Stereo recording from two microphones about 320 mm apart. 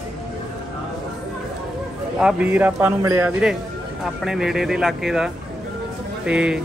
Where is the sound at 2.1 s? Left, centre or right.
Centre.